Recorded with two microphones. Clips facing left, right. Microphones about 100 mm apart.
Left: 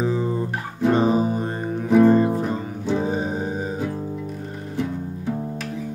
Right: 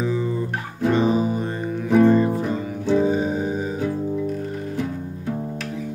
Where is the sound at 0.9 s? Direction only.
40° left (ahead or behind).